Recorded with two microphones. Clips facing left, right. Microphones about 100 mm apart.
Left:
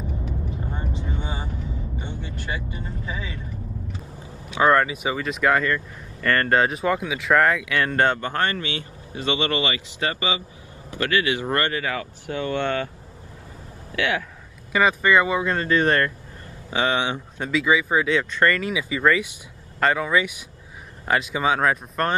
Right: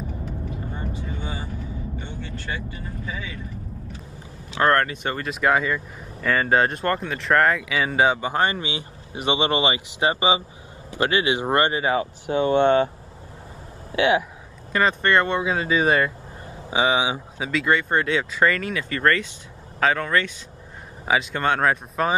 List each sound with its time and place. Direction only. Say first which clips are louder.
0.9 s vehicle: left 1 dB; 25° left (ahead or behind)
3.1 s speech: even; 30° left (ahead or behind)
4.6 s speech: left 1 dB; 5° left (ahead or behind); by 12.9 s 20° right (ahead or behind)
13.9 s speech: right 5 dB; 20° right (ahead or behind)
14.7 s speech: left 1 dB; 5° left (ahead or behind)